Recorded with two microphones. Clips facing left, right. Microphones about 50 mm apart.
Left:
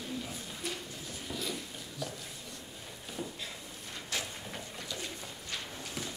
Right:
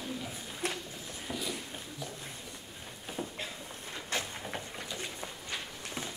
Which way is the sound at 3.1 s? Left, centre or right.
Right.